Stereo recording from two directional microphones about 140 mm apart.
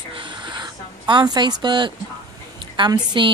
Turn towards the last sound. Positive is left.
turn(degrees=-35)  # may be behind; listen again after turning